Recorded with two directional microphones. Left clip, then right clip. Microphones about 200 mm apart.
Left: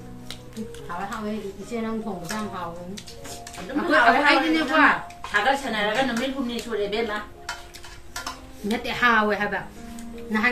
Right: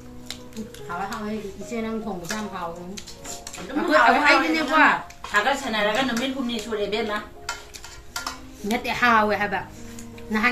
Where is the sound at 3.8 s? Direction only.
20° right (ahead or behind).